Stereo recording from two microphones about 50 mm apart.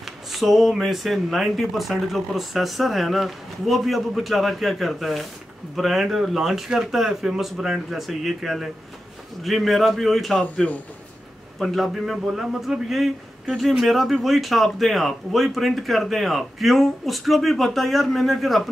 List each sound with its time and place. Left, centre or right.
0.3 s speech: centre
10.4 s a man's voice: left
11.6 s speech: centre